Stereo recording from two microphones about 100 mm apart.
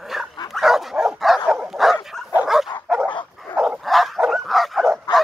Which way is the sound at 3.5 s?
15° right (ahead or behind).